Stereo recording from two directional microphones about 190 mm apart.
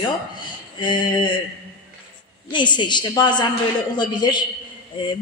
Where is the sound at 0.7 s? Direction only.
25° left (ahead or behind).